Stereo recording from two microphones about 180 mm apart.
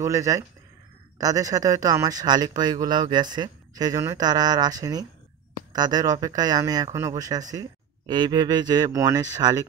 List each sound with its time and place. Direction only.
0.0 s speech: 15° right (ahead or behind)